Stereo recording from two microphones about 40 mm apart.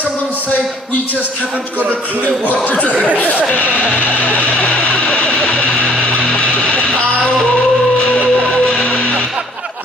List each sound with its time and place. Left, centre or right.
2.2 s music: left
5.3 s vehicle: left
5.9 s music: left
7.5 s music: left